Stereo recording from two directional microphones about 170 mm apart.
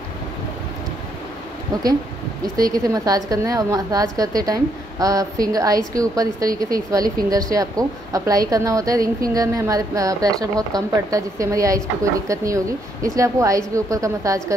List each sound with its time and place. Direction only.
2.5 s a woman's voice: 20° right (ahead or behind)